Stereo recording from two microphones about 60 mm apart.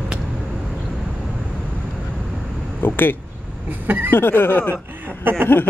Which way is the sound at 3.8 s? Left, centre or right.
Right.